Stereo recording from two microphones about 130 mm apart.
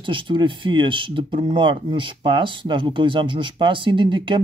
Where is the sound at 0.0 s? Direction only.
40° right (ahead or behind).